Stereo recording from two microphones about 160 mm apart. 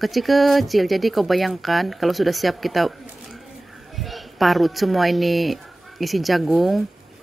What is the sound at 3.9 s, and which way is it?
A woman's voice, centre (ahead or behind).